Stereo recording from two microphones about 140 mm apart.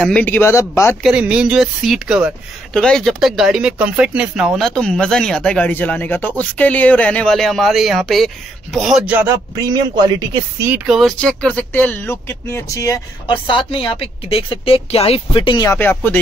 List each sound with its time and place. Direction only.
0.0 s speech: 10° left (ahead or behind)
1.0 s speech: 5° right (ahead or behind)
2.7 s speech: 5° left (ahead or behind)
9.6 s speech: 25° right (ahead or behind)
10.9 s speech: centre (ahead or behind); by 13.0 s 20° left (ahead or behind)
13.3 s a woman's voice: 35° left (ahead or behind)
15.6 s speech: 20° left (ahead or behind)